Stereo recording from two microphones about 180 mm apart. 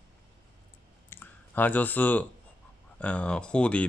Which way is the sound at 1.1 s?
10° left (ahead or behind).